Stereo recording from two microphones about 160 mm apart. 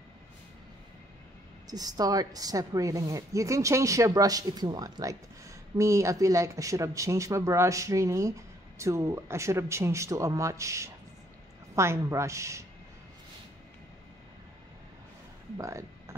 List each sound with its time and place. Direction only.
1.7 s a woman's voice: 25° right (ahead or behind)
15.5 s music: 20° right (ahead or behind)